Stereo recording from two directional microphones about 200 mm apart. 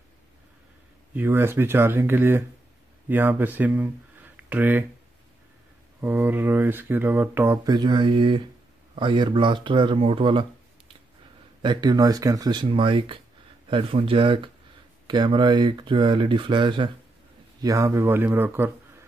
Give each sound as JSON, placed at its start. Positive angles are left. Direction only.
{"t": 1.1, "sound": "speech", "side_deg": -10}
{"t": 5.9, "sound": "speech", "side_deg": -10}
{"t": 11.6, "sound": "speech", "side_deg": -20}